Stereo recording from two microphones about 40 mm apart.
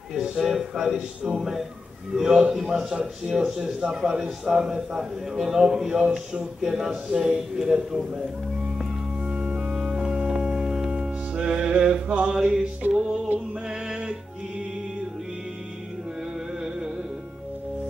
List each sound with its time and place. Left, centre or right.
0.2 s speech: centre
7.1 s a sound: centre
7.3 s speech: centre
9.2 s organ: right
9.8 s music: right
11.4 s a sound: centre
12.8 s music: right
13.7 s music: right
16.6 s music: centre